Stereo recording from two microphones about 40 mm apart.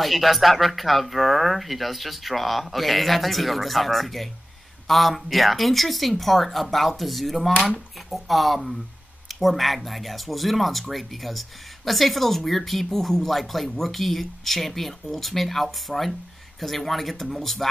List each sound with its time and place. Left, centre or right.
0.0 s speech: centre